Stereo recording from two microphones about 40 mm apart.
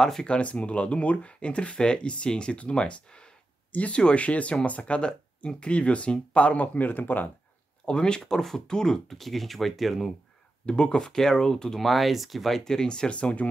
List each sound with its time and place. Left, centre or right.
0.0 s speech: centre
0.3 s speech: left
3.7 s speech: left
7.8 s speech: left
8.2 s speech: centre
10.6 s speech: left
11.8 s speech: centre; by 13.5 s left